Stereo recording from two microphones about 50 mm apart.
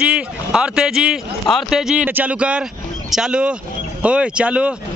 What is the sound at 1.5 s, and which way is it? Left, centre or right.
Speech, centre.